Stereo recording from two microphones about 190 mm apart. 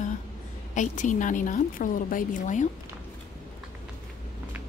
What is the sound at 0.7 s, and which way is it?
A woman's voice, 40° left (ahead or behind).